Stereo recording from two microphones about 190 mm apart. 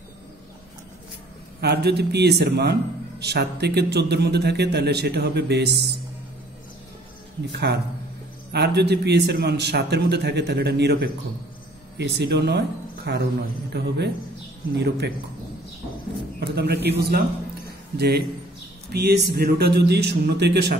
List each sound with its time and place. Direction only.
1.6 s a man's voice: 60° right (ahead or behind)
8.5 s a man's voice: 60° right (ahead or behind)
16.3 s a man's voice: 60° right (ahead or behind)